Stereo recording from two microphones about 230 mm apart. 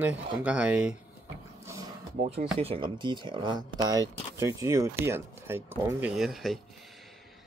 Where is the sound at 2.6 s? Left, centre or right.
Right; by 6.6 s centre.